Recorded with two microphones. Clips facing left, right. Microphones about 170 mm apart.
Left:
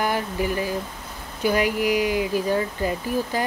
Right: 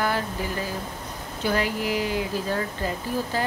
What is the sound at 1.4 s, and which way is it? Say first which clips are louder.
Speech: left 4 dB; 15° left (ahead or behind).